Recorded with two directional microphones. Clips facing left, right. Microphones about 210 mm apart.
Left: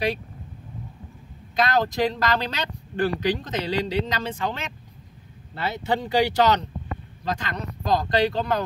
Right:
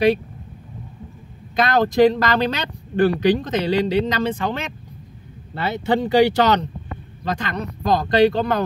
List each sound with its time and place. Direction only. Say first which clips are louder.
1.5 s speech: right 4 dB; 65° right (ahead or behind)